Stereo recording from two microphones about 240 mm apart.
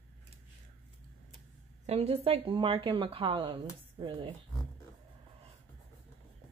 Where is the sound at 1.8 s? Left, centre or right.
Right.